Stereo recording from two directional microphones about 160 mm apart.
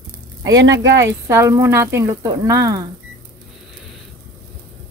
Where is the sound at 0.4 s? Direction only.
20° right (ahead or behind).